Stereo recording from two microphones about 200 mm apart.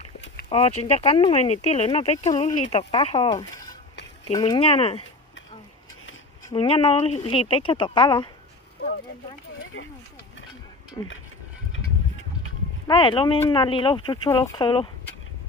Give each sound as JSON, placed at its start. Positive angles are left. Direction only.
{"t": 0.5, "sound": "speech", "side_deg": 30}
{"t": 6.5, "sound": "speech", "side_deg": 25}
{"t": 10.9, "sound": "speech", "side_deg": 20}
{"t": 12.8, "sound": "speech", "side_deg": 25}